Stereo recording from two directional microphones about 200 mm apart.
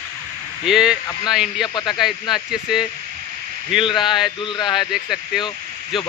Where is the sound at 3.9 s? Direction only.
25° left (ahead or behind).